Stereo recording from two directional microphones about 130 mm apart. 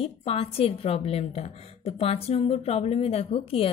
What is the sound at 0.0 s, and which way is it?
A woman's voice, 50° left (ahead or behind).